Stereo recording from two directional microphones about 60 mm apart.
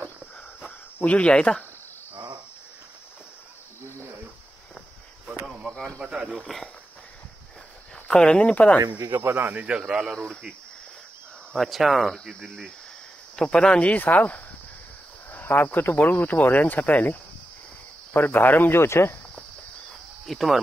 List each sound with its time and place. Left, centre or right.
1.0 s speech: centre
5.9 s speech: centre
6.4 s speech: centre
8.1 s speech: centre
9.2 s speech: right
9.7 s speech: centre
11.5 s speech: centre
13.4 s speech: centre
13.9 s speech: left
20.2 s speech: centre